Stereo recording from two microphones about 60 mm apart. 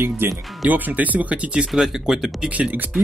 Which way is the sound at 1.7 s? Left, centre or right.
Centre.